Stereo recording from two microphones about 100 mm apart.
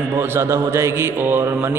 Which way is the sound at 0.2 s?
25° right (ahead or behind).